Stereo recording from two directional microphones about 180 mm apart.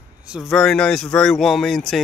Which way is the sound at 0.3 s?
Centre (ahead or behind).